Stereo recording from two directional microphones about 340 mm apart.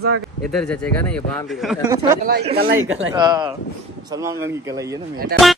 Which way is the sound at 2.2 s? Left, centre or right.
Right.